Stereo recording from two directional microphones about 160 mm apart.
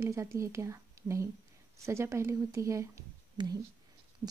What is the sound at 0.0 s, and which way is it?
Speech, 20° right (ahead or behind).